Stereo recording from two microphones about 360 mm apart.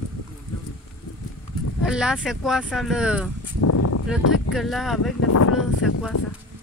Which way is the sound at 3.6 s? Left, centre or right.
Left.